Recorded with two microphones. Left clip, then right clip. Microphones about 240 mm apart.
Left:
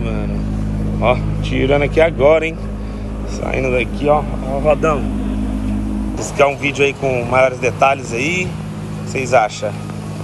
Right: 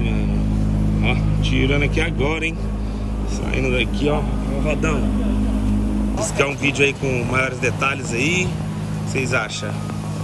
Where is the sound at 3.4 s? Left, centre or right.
Centre.